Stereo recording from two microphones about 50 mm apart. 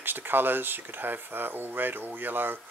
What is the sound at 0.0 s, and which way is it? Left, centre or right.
Speech, right.